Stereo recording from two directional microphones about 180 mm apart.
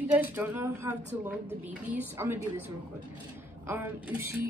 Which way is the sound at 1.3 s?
10° right (ahead or behind).